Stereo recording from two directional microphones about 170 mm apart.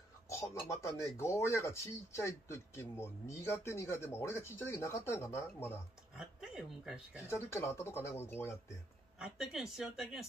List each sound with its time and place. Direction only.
0.3 s speech: 20° left (ahead or behind)
6.1 s speech: 5° right (ahead or behind)
7.2 s speech: 15° left (ahead or behind)
9.2 s speech: centre (ahead or behind)